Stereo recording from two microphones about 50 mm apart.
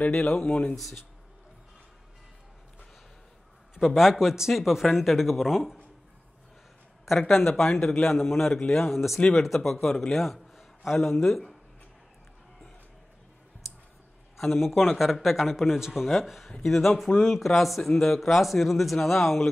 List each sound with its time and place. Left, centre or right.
0.1 s speech: centre
0.5 s speech: left
0.7 s speech: centre
3.8 s speech: centre
7.1 s a man's voice: centre
14.3 s a man's voice: centre